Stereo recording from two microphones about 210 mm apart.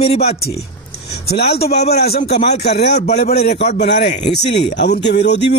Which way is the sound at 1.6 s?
50° left (ahead or behind).